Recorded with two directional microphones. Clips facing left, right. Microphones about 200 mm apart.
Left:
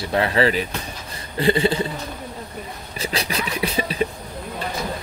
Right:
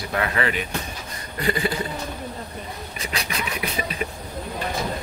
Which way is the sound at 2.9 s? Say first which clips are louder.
Left 5 dB; 30° left (ahead or behind).